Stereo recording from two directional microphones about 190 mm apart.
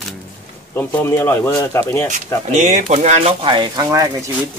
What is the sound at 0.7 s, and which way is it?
Speech, 15° left (ahead or behind).